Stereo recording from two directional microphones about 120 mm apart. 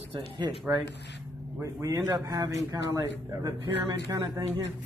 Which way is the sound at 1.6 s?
30° right (ahead or behind).